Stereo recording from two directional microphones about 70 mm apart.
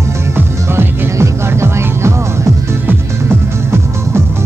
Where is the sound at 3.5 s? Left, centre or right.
Right.